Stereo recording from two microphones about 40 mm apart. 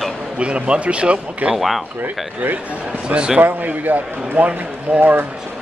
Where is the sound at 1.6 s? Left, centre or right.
Centre.